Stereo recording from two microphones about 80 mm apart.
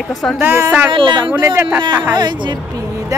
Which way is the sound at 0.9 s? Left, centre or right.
Right.